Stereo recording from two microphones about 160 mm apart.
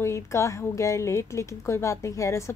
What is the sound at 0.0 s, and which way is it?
Speech, 15° left (ahead or behind).